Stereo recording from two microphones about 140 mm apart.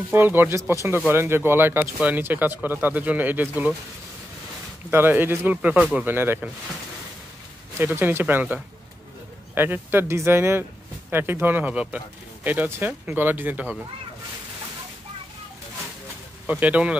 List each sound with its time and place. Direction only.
0.1 s speech: 15° right (ahead or behind)
4.9 s speech: 15° right (ahead or behind)
7.8 s speech: 15° right (ahead or behind)
9.6 s speech: 15° right (ahead or behind)
16.4 s speech: 10° right (ahead or behind)